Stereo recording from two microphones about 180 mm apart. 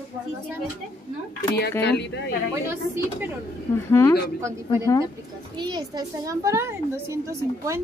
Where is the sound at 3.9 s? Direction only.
15° left (ahead or behind).